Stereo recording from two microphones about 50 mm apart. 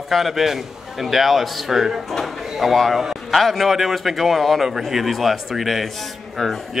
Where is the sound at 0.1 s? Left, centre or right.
Centre.